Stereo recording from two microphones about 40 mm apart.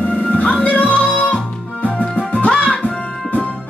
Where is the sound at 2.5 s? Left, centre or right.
Left.